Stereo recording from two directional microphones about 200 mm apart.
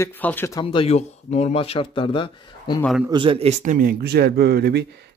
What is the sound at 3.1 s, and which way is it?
Speech, 25° right (ahead or behind).